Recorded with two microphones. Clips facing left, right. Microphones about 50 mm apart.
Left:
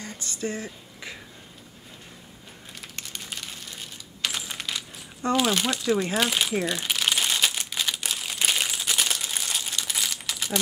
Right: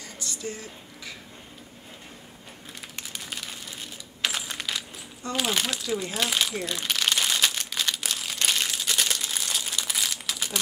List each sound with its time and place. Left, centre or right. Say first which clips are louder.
0.0 s a sound: left 3 dB; left
3.0 s crumpling: even; centre
4.2 s coin: right 1 dB; centre
5.3 s speech: left 4 dB; centre
6.6 s crumpling: left 1 dB; centre